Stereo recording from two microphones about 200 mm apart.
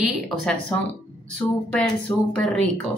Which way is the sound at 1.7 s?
5° left (ahead or behind).